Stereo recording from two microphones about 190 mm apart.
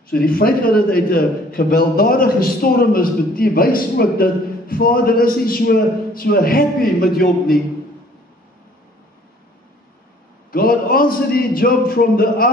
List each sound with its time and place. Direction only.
0.2 s a man's voice: 50° left (ahead or behind)
10.5 s a man's voice: 50° left (ahead or behind)